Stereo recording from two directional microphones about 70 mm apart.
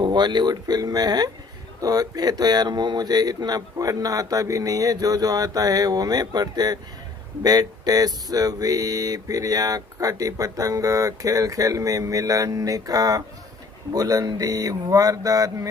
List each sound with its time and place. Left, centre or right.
0.0 s speech: right
1.8 s speech: right